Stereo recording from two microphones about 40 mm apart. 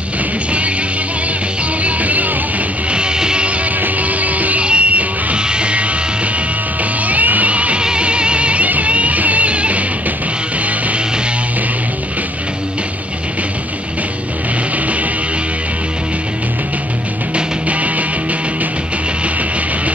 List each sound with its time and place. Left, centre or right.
1.8 s music: right
2.9 s music: right
3.8 s music: right
6.8 s music: right
17.6 s music: right